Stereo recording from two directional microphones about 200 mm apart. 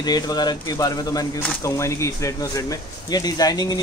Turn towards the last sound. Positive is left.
turn(degrees=20)  # may be behind; listen again after turning